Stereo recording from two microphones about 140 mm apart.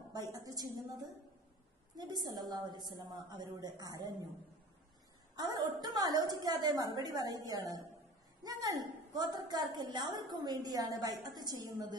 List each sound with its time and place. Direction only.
0.1 s a sound: 25° right (ahead or behind)
2.0 s a woman's voice: 30° right (ahead or behind)
5.3 s a woman's voice: 30° right (ahead or behind)